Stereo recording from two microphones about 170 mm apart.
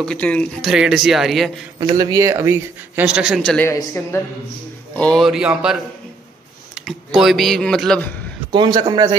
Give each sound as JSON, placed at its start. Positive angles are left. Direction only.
{"t": 0.0, "sound": "speech", "side_deg": 5}
{"t": 1.8, "sound": "speech", "side_deg": -20}
{"t": 3.6, "sound": "a woman's voice", "side_deg": 15}
{"t": 4.9, "sound": "speech", "side_deg": 5}
{"t": 8.5, "sound": "a man's voice", "side_deg": -25}